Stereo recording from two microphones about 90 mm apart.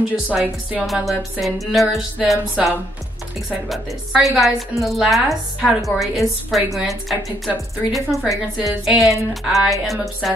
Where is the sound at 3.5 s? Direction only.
5° right (ahead or behind).